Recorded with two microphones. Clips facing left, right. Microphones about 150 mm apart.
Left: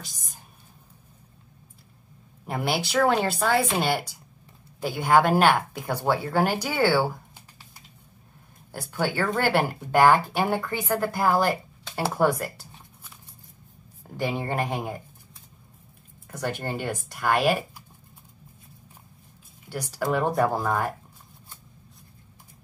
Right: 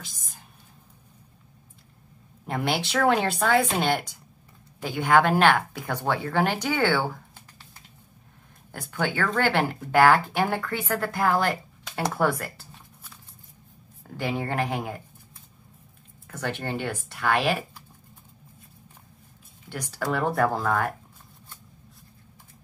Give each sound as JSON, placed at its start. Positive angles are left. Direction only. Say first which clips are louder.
{"t": 0.0, "sound": "whispering", "louder": "left 1 dB", "side_deg": 40}
{"t": 2.4, "sound": "a woman's voice", "louder": "even", "side_deg": 5}
{"t": 8.7, "sound": "speech", "louder": "left 1 dB", "side_deg": 10}
{"t": 14.0, "sound": "speech", "louder": "left 1 dB", "side_deg": 10}
{"t": 16.3, "sound": "speech", "louder": "left 1 dB", "side_deg": 10}
{"t": 19.7, "sound": "speech", "louder": "left 2 dB", "side_deg": 10}